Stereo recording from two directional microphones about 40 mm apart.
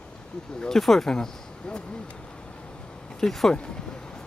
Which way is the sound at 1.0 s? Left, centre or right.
Centre.